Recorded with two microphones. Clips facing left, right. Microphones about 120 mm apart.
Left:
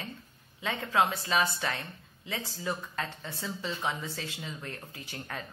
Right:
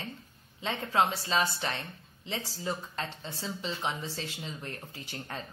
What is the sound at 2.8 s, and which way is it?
A woman's voice, 30° right (ahead or behind).